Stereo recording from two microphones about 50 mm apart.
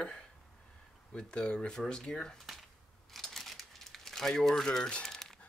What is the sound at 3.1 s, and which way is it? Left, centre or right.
Crumpling, centre.